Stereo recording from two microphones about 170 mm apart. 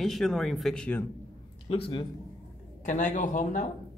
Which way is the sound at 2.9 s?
45° left (ahead or behind).